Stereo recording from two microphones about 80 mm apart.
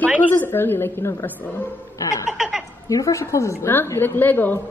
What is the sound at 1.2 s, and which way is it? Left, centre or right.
Speech, left.